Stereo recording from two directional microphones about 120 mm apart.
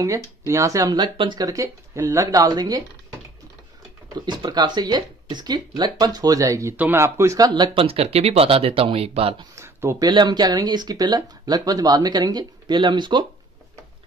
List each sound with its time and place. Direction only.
0.5 s speech: 25° right (ahead or behind)
0.9 s speech: 40° right (ahead or behind)
1.4 s speech: 30° right (ahead or behind)
7.8 s speech: 55° right (ahead or behind)
9.6 s speech: 25° right (ahead or behind); by 13.2 s 40° right (ahead or behind)